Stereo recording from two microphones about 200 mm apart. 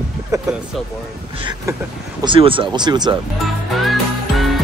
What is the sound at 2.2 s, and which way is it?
Speech, 25° right (ahead or behind).